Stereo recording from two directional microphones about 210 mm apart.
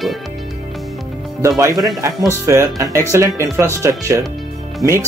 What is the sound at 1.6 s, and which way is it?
Speech, 15° right (ahead or behind).